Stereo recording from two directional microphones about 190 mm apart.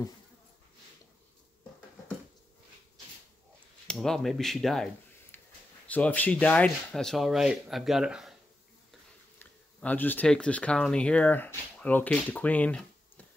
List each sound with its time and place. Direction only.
3.8 s speech: 5° left (ahead or behind)
5.3 s a sound: 10° left (ahead or behind)
5.9 s speech: 10° left (ahead or behind)
9.4 s speech: 10° left (ahead or behind)